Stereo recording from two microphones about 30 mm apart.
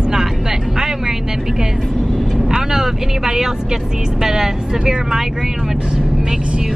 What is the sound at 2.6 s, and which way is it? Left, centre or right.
Speech, centre.